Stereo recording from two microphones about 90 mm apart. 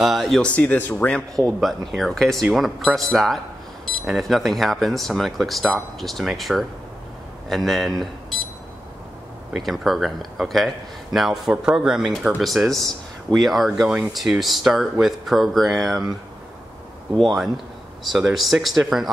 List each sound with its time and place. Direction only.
0.0 s speech: centre (ahead or behind)
0.4 s speech: 15° left (ahead or behind)
1.6 s speech: centre (ahead or behind)
9.5 s speech: centre (ahead or behind)
17.2 s speech: centre (ahead or behind)